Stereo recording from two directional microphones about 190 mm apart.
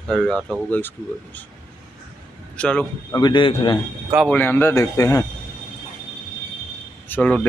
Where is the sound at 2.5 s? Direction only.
5° left (ahead or behind).